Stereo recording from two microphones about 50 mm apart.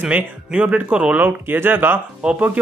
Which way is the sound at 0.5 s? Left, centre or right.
Right.